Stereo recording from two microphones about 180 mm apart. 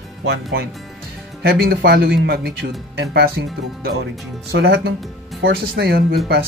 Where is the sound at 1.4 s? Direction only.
60° right (ahead or behind).